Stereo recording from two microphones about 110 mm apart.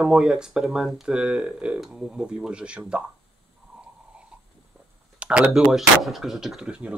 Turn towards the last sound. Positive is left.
turn(degrees=-5)  # may be behind; listen again after turning